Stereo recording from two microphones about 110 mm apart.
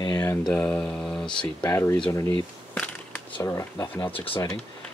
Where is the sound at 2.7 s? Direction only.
15° left (ahead or behind).